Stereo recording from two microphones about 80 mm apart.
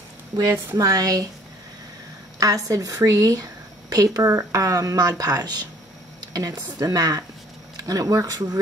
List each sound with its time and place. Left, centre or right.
0.7 s speech: right
2.4 s speech: right